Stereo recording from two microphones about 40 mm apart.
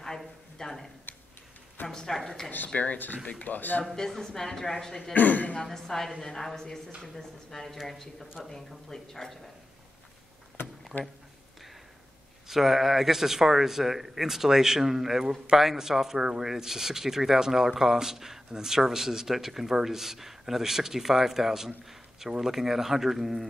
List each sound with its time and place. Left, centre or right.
0.6 s speech: centre
1.9 s a man's voice: centre
2.7 s speech: left
3.9 s a man's voice: centre
5.1 s speech: left
5.6 s a man's voice: centre
10.9 s speech: left
12.4 s speech: centre